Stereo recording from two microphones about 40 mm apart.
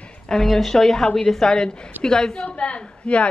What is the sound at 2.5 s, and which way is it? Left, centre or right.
Speech, left.